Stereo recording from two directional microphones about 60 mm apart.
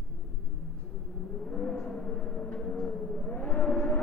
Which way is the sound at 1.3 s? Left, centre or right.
Centre.